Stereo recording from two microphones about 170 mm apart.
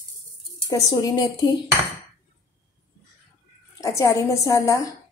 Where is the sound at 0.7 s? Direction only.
25° left (ahead or behind).